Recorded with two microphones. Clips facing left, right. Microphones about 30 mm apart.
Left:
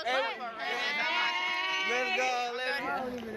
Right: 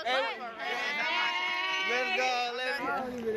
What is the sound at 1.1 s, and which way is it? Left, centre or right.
Sheep, centre.